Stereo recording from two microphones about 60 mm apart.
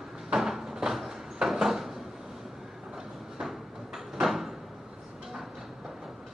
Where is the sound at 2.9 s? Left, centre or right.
Centre.